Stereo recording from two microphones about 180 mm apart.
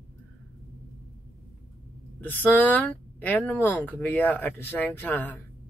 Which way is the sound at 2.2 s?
10° left (ahead or behind).